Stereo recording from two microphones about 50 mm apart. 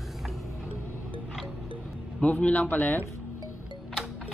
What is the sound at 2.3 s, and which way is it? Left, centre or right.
Speech, left.